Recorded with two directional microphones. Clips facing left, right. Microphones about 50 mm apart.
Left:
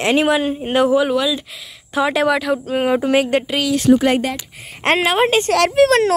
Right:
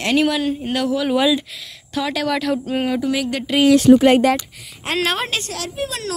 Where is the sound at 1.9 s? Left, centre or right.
Left.